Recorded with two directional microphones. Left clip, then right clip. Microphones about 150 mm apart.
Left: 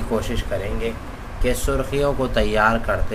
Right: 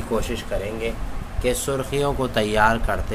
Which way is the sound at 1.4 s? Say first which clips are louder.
Left 1 dB; 20° right (ahead or behind).